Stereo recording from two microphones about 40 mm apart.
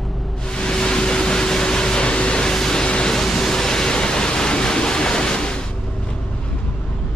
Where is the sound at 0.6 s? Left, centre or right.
Centre.